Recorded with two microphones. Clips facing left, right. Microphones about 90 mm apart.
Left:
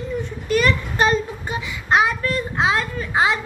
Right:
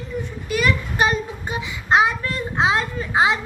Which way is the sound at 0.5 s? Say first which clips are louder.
Left 3 dB; 10° right (ahead or behind).